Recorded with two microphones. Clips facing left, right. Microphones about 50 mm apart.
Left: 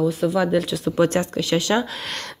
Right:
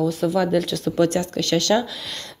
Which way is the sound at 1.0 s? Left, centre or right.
Left.